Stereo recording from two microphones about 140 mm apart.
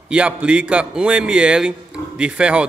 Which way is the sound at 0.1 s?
10° right (ahead or behind).